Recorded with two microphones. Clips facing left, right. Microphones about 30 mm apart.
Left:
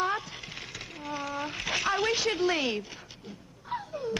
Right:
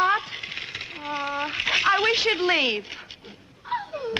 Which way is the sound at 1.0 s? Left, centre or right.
Right.